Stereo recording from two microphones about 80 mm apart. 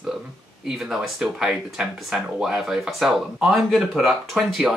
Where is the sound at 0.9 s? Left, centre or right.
Centre.